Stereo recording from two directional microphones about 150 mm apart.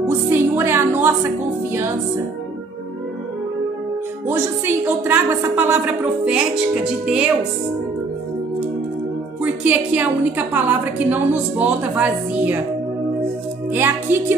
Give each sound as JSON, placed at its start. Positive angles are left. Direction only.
{"t": 0.3, "sound": "music", "side_deg": -15}
{"t": 4.3, "sound": "a woman's voice", "side_deg": -15}
{"t": 9.4, "sound": "a woman's voice", "side_deg": -10}
{"t": 13.7, "sound": "a woman's voice", "side_deg": -15}